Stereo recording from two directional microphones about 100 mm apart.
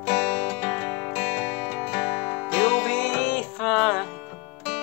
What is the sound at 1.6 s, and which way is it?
Music, 10° right (ahead or behind).